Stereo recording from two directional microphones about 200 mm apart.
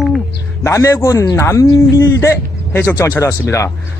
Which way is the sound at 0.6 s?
15° left (ahead or behind).